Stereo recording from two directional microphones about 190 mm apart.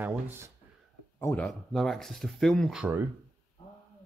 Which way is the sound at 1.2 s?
5° left (ahead or behind).